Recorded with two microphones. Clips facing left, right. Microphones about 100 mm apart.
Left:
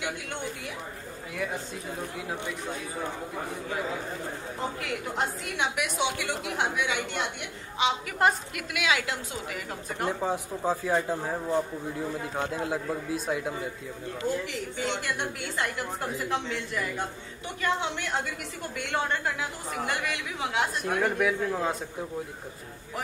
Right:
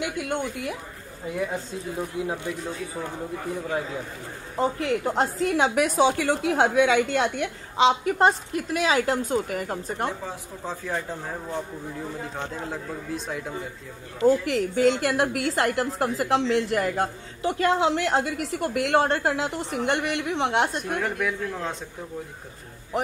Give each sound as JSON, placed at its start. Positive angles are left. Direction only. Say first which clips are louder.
{"t": 1.3, "sound": "speech", "louder": "right 4 dB", "side_deg": -25}
{"t": 4.6, "sound": "a woman's voice", "louder": "right 11 dB", "side_deg": -30}
{"t": 10.2, "sound": "speech", "louder": "left 6 dB", "side_deg": 15}
{"t": 14.5, "sound": "a woman's voice", "louder": "right 10 dB", "side_deg": -90}
{"t": 19.3, "sound": "a woman's voice", "louder": "right 6 dB", "side_deg": -75}
{"t": 20.9, "sound": "speech", "louder": "left 1 dB", "side_deg": 5}